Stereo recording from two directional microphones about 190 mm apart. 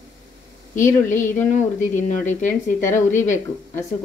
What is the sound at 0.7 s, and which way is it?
Speech, 45° left (ahead or behind).